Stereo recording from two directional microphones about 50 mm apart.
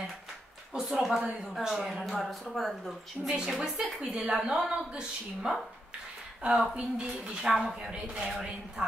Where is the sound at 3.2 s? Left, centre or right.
Centre.